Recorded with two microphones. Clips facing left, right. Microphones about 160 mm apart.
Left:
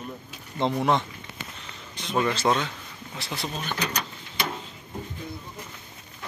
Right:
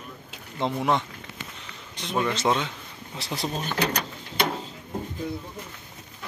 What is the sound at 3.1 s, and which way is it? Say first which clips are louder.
Speech: right 3 dB; 35° right (ahead or behind).